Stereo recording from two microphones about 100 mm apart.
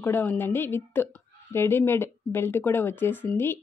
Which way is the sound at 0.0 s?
20° left (ahead or behind).